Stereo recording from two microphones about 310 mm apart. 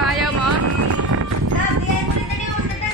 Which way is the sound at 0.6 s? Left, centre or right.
Right.